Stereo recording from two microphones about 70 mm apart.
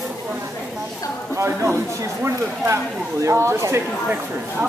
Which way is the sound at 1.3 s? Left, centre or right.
Right.